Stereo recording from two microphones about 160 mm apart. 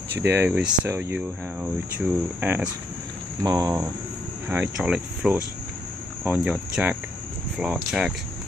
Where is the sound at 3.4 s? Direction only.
20° right (ahead or behind).